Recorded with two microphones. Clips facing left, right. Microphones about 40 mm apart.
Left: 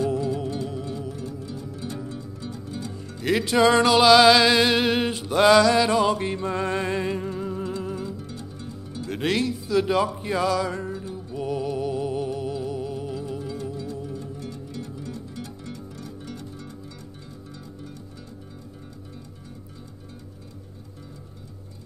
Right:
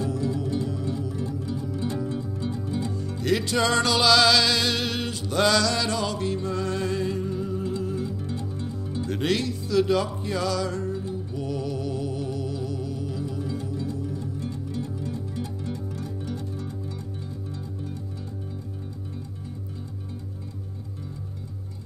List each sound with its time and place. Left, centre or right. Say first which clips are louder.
0.0 s music: left 3 dB; left
1.1 s music: right 4 dB; centre
3.2 s music: left 4 dB; centre; by 8.0 s left
8.3 s music: right 5 dB; right
9.0 s music: left 1 dB; centre
14.4 s music: right 3 dB; right